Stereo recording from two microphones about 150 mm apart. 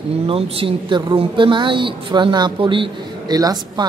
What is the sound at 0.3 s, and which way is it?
A woman's voice, 40° right (ahead or behind).